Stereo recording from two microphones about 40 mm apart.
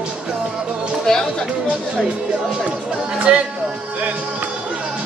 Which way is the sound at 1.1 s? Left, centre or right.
Centre.